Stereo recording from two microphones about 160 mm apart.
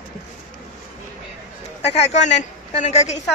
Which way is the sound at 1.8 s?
45° left (ahead or behind).